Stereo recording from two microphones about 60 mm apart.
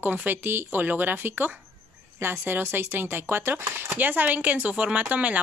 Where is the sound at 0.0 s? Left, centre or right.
Right.